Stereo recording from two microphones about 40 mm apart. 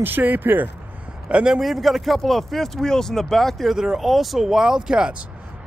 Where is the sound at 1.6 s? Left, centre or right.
Centre.